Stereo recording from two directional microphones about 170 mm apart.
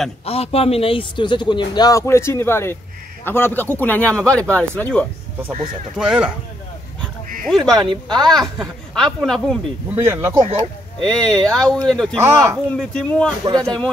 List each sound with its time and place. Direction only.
0.2 s a man's voice: 35° left (ahead or behind); by 5.0 s 5° left (ahead or behind)
5.9 s speech: 5° right (ahead or behind)
7.4 s speech: 5° left (ahead or behind)
7.7 s speech: 25° right (ahead or behind)
8.9 s speech: centre (ahead or behind)
9.8 s speech: 15° right (ahead or behind)
11.0 s speech: 5° left (ahead or behind)
12.2 s speech: 15° right (ahead or behind)
12.7 s speech: 5° left (ahead or behind)